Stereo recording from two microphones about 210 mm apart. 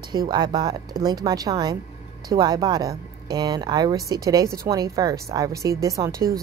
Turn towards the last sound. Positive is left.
turn(degrees=-15)  # may be behind; listen again after turning